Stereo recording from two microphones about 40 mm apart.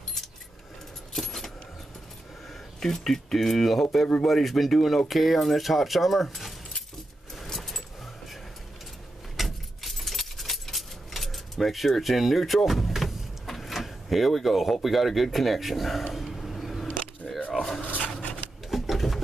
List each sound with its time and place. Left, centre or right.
1.1 s keys jangling: centre
2.8 s speech: centre
7.3 s a sound: centre
9.4 s keys jangling: centre
12.6 s speech: centre
16.1 s vehicle: centre
17.5 s dog: centre
17.9 s rub: left
18.7 s a sound: centre